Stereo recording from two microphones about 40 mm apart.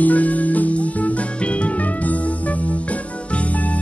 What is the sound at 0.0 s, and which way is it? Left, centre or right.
Music, left.